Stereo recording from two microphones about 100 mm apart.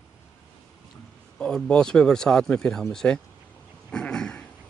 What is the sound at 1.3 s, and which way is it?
Speech, 5° left (ahead or behind).